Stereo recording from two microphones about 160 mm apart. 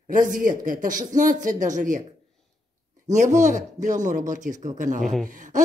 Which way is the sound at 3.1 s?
50° right (ahead or behind).